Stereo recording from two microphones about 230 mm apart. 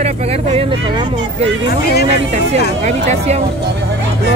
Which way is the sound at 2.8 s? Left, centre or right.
Right.